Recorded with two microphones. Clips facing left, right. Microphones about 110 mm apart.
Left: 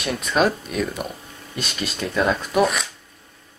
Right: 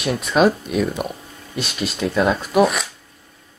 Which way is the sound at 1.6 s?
Centre (ahead or behind).